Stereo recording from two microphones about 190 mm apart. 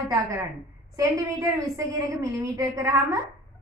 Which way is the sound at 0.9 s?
15° right (ahead or behind).